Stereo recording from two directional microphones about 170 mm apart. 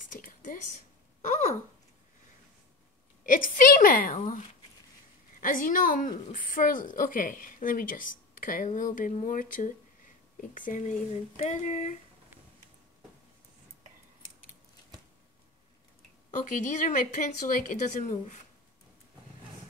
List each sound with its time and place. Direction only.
0.1 s a sound: 50° left (ahead or behind)
3.3 s a woman's voice: 55° left (ahead or behind)
5.4 s a woman's voice: 50° left (ahead or behind)
16.3 s a woman's voice: 50° left (ahead or behind)